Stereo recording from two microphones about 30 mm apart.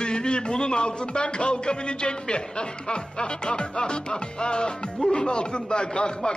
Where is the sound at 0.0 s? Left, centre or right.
Left.